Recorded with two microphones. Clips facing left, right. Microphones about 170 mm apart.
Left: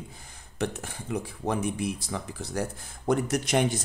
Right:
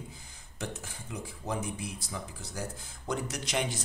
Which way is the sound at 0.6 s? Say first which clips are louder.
Left 8 dB; 65° left (ahead or behind).